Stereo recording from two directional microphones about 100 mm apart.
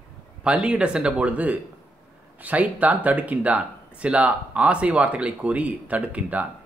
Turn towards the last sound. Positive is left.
turn(degrees=-15)  # may be behind; listen again after turning